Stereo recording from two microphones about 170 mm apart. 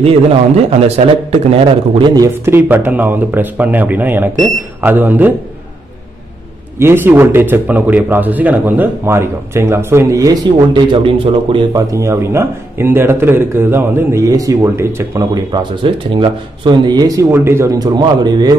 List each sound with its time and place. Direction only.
0.0 s a man's voice: 35° right (ahead or behind); by 5.3 s 10° right (ahead or behind)
6.8 s speech: 15° right (ahead or behind); by 11.6 s 30° right (ahead or behind)
11.7 s speech: 20° right (ahead or behind)